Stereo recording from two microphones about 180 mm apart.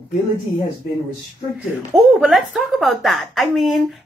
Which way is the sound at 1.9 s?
Centre (ahead or behind).